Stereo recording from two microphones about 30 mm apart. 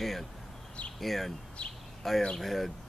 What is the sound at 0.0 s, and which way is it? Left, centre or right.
Speech, centre.